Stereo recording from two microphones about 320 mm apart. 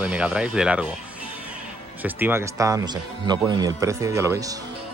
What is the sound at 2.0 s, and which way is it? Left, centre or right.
Speech, centre.